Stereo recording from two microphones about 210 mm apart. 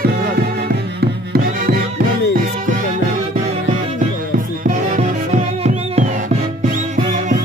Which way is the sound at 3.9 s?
40° right (ahead or behind).